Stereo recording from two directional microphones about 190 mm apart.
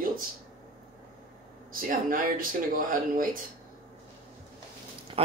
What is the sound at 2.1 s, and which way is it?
Speech, 45° right (ahead or behind).